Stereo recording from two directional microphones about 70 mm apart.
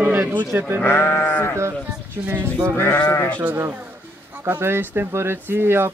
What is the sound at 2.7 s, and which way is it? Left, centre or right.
Sheep, left.